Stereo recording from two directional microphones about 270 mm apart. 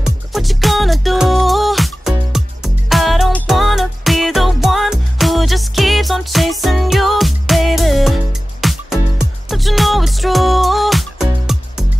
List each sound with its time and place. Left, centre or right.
0.0 s music: centre